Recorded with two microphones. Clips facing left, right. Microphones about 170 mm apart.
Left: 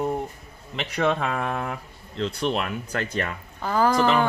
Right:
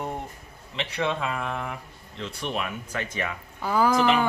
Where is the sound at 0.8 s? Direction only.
50° left (ahead or behind).